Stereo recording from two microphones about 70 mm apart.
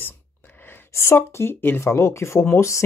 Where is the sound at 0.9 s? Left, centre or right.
Left.